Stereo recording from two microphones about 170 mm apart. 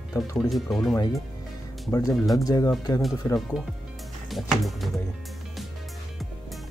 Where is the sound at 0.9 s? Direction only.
20° left (ahead or behind).